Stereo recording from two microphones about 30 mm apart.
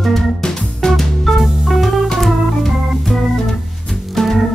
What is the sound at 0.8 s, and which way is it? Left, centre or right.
Music, centre.